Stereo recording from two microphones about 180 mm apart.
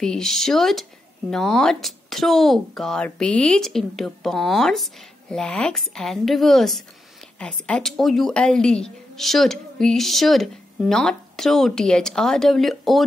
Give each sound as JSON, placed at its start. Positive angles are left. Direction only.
{"t": 0.0, "sound": "a woman's voice", "side_deg": 0}